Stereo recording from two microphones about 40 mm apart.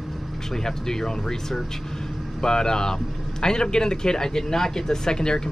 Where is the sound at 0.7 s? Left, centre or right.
Centre.